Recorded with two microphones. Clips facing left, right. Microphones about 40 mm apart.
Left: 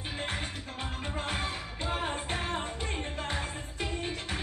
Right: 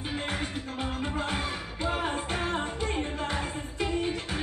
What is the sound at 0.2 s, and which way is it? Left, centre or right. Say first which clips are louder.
Music: right 3 dB; right.